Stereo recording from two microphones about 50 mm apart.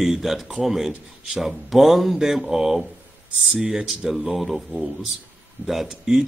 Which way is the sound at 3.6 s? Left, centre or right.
Centre.